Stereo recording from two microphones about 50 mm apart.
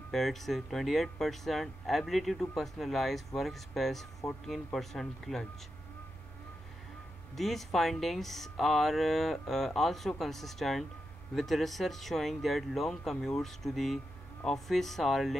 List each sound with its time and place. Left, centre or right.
0.1 s speech: centre
4.2 s speech: left
4.7 s speech: centre
7.3 s speech: centre